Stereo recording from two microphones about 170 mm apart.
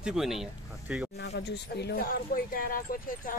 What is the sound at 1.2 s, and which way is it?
Speech, 85° left.